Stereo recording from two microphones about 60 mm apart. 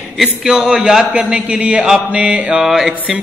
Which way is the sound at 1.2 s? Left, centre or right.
Centre.